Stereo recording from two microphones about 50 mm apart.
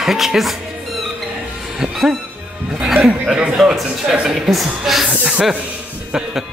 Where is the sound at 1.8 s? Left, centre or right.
Centre.